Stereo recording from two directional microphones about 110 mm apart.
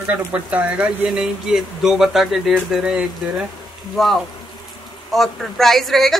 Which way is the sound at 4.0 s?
5° left (ahead or behind).